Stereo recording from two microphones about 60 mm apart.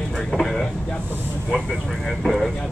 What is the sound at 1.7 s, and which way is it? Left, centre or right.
Vehicle, centre.